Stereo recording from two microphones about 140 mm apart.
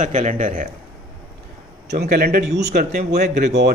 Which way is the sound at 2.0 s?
90° right.